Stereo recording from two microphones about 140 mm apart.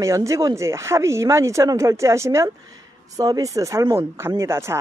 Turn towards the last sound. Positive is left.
turn(degrees=-20)  # may be behind; listen again after turning